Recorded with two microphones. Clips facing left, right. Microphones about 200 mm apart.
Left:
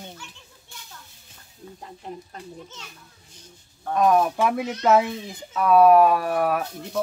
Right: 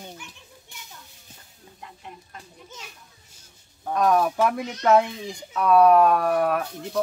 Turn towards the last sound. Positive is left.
turn(degrees=0)  # may be behind; listen again after turning